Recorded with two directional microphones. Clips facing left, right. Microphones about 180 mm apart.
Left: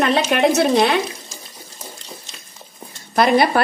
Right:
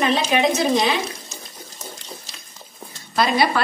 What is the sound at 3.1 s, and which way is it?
Speech, 55° left (ahead or behind).